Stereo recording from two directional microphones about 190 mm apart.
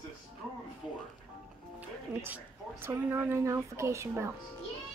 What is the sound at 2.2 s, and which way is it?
Speech, 10° right (ahead or behind).